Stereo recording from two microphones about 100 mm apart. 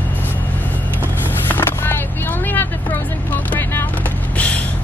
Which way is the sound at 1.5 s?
20° left (ahead or behind).